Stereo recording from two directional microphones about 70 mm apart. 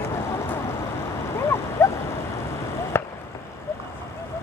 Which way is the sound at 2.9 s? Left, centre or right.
Left.